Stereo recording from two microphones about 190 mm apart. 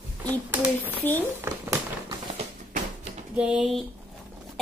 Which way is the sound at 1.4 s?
15° right (ahead or behind).